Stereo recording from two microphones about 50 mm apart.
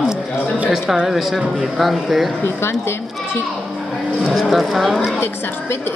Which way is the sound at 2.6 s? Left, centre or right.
Left.